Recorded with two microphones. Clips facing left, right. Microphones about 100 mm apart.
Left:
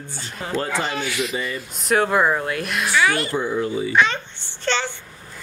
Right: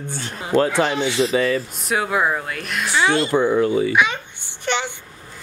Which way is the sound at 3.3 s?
75° right (ahead or behind).